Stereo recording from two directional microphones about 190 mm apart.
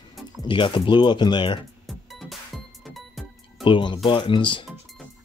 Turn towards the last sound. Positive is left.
turn(degrees=25)  # may be behind; listen again after turning